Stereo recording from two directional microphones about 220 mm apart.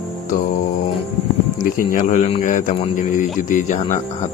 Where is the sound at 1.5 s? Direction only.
40° left (ahead or behind).